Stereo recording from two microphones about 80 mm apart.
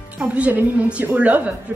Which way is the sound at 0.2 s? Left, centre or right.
Centre.